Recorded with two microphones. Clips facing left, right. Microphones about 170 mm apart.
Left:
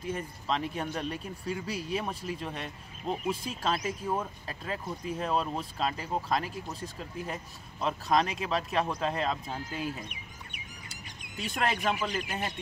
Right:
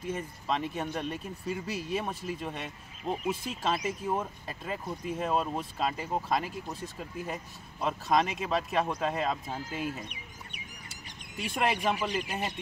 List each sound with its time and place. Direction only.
0.1 s speech: centre (ahead or behind)
11.4 s speech: 10° right (ahead or behind)